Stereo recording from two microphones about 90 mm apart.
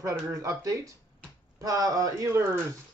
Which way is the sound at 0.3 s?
35° right (ahead or behind).